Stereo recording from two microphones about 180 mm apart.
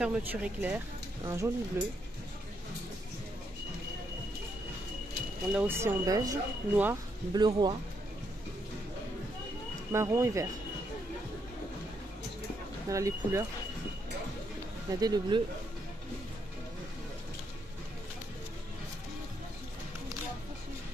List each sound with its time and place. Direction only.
0.0 s speech: 5° right (ahead or behind)
1.2 s speech: 20° right (ahead or behind)
5.5 s speech: 10° right (ahead or behind)
9.9 s speech: 15° right (ahead or behind)
12.9 s speech: 15° right (ahead or behind)
14.9 s speech: 20° right (ahead or behind)